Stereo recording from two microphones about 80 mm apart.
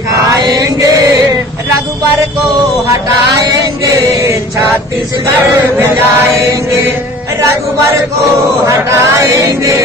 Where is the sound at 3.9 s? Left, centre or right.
Right.